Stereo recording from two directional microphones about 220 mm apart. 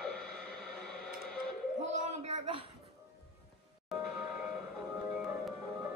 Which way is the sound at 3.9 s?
Centre (ahead or behind).